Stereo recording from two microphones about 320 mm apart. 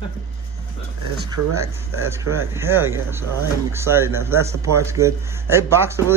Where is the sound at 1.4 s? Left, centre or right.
Right.